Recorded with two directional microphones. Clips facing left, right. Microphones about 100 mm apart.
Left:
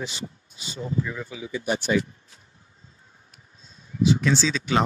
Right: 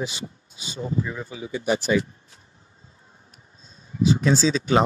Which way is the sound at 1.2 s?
50° right (ahead or behind).